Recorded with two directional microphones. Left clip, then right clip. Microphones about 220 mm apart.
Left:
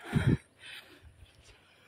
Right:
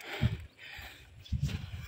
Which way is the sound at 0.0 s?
30° left (ahead or behind).